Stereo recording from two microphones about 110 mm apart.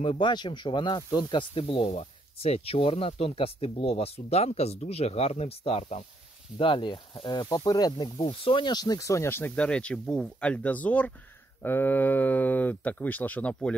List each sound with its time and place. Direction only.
0.0 s speech: 50° left (ahead or behind)
1.3 s speech: 55° left (ahead or behind)
2.0 s speech: 70° left (ahead or behind)
6.6 s speech: 45° left (ahead or behind)
8.2 s speech: 55° left (ahead or behind); by 9.5 s 25° left (ahead or behind)
9.6 s speech: 10° left (ahead or behind)